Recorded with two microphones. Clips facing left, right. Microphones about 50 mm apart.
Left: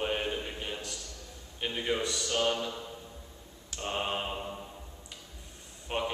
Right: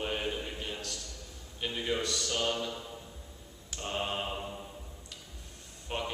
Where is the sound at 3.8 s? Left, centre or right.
Centre.